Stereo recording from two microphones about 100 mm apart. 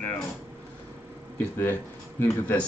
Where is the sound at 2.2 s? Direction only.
15° left (ahead or behind).